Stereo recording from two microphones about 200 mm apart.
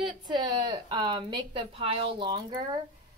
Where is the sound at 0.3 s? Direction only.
20° right (ahead or behind).